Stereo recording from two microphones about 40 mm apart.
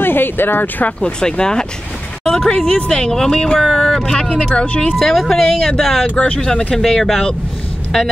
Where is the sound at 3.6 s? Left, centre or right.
Centre.